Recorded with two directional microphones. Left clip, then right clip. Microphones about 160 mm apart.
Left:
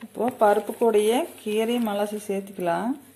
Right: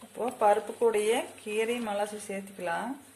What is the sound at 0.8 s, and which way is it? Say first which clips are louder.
Speech: left 6 dB; 30° left (ahead or behind).